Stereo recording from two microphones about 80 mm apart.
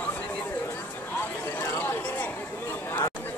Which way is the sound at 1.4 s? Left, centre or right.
Left.